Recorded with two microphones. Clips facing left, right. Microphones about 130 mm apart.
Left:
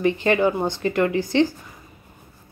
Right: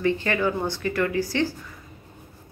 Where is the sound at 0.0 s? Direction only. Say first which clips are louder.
Left 4 dB; 20° left (ahead or behind).